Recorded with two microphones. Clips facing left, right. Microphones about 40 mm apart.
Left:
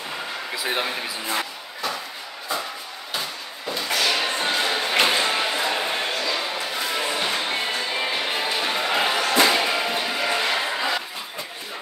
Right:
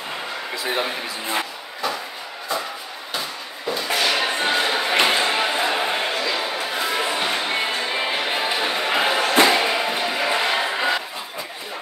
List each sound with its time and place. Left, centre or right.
0.7 s speech: centre
3.6 s thump: centre
5.6 s a sound: centre
9.5 s slam: centre